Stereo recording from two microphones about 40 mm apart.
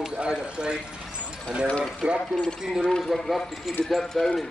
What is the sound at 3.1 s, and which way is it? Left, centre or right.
Speech, centre.